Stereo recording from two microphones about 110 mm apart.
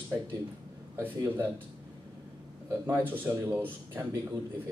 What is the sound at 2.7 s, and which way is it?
A man's voice, 20° right (ahead or behind).